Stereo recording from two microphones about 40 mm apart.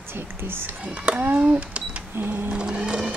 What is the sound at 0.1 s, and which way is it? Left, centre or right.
Speech, right.